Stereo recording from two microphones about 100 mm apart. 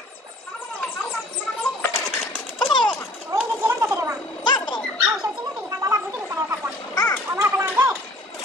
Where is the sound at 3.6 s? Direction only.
25° right (ahead or behind).